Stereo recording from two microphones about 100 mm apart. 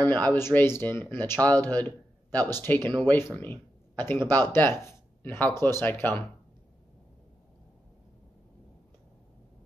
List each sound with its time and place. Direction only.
0.0 s speech: 15° left (ahead or behind)